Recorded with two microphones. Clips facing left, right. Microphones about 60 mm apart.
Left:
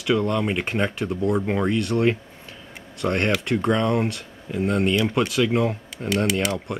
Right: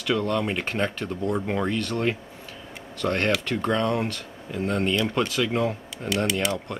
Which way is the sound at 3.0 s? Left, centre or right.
Left.